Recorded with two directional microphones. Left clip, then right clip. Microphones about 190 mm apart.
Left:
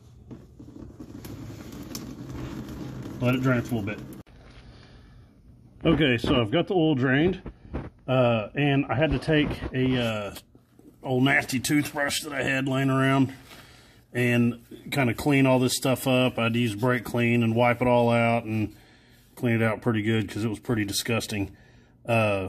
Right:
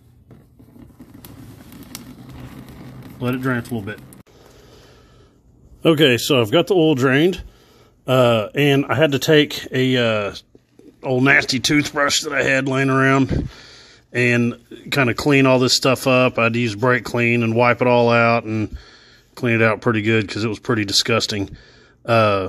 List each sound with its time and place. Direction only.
3.2 s speech: 55° right (ahead or behind)
5.8 s speech: 45° right (ahead or behind)
11.0 s speech: 30° right (ahead or behind)